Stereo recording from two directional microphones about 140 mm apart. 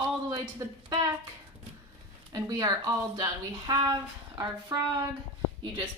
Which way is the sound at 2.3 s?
30° right (ahead or behind).